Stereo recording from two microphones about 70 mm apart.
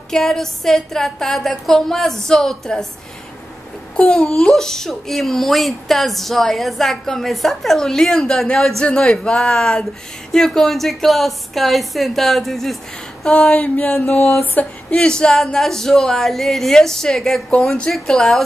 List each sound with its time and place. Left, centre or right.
0.1 s a child's voice: centre
3.9 s a child's voice: centre
14.4 s a sound: left
15.0 s speech: centre